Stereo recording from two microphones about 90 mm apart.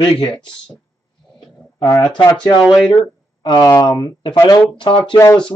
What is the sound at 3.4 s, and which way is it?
Speech, 55° left (ahead or behind).